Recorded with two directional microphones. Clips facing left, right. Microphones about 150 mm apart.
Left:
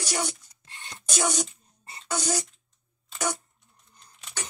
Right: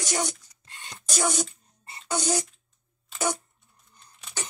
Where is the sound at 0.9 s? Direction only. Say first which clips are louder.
Even; centre (ahead or behind).